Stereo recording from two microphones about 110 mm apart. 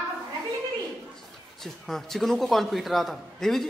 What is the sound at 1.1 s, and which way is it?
A man's voice, 5° left (ahead or behind).